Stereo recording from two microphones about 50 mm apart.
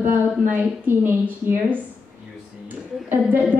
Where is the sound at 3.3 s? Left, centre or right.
Right.